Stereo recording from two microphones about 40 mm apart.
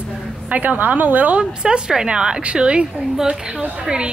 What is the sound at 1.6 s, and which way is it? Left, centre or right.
A woman's voice, right.